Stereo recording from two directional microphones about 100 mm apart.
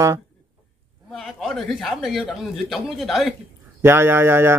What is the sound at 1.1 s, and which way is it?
A man's voice, centre (ahead or behind).